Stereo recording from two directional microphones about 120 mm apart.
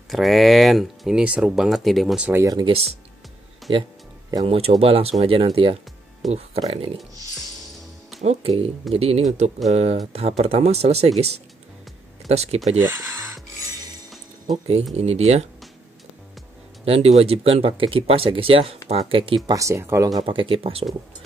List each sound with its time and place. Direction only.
0.1 s speech: centre (ahead or behind)
2.4 s speech: 35° right (ahead or behind); by 6.9 s 55° right (ahead or behind)
8.2 s speech: 60° right (ahead or behind)
12.7 s a sound: 15° right (ahead or behind)
15.0 s speech: 60° right (ahead or behind)
16.8 s speech: 55° right (ahead or behind)
19.5 s speech: 25° right (ahead or behind)
20.2 s speech: 45° right (ahead or behind)